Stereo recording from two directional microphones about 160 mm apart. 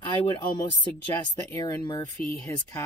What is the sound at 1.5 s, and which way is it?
Speech, 20° left (ahead or behind).